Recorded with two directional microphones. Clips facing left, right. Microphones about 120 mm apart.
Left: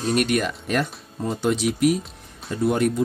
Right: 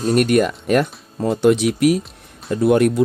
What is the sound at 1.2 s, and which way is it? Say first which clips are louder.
Speech: right 7 dB; 70° right (ahead or behind).